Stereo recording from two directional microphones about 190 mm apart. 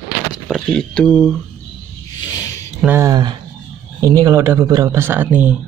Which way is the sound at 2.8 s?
15° right (ahead or behind).